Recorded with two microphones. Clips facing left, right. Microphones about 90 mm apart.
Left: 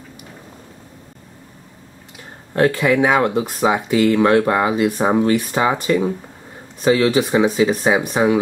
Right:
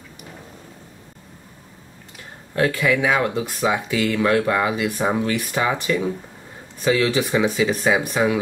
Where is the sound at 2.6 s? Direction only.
40° left (ahead or behind).